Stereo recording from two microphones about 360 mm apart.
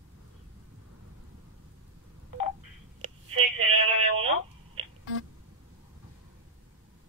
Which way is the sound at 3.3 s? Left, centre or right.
Right.